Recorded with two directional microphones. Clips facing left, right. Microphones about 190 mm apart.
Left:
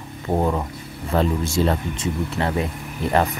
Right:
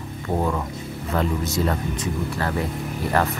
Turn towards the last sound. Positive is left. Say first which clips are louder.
# left 2 dB
turn(degrees=20)  # may be behind; listen again after turning